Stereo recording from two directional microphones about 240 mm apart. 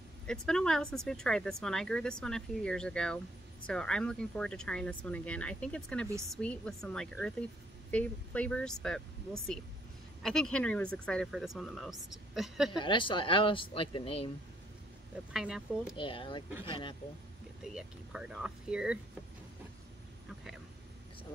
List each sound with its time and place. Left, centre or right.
0.3 s speech: centre
12.7 s speech: centre
15.3 s speech: centre
16.0 s speech: left
17.7 s speech: centre